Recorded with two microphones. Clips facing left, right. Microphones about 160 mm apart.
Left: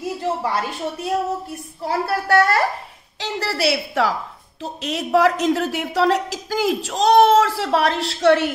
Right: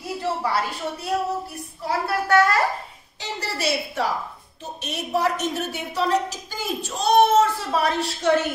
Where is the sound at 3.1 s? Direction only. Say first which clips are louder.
Left 6 dB; 90° left.